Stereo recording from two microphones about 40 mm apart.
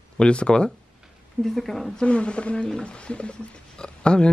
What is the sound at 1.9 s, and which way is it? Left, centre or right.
Speech, left.